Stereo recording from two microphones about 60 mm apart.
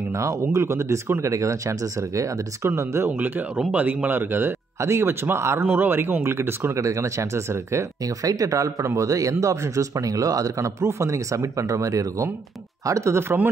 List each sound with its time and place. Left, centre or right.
0.1 s speech: right
1.2 s speech: right
3.1 s speech: right
6.7 s speech: right
8.2 s speech: right
12.8 s speech: right